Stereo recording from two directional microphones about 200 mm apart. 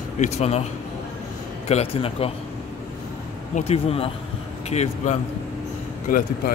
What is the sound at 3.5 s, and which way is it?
Speech, 30° left (ahead or behind).